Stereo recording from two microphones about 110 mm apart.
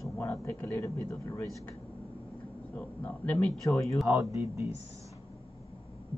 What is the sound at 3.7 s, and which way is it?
Speech, 25° left (ahead or behind).